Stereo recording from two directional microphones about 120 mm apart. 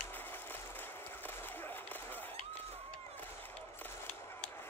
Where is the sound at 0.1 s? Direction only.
15° left (ahead or behind).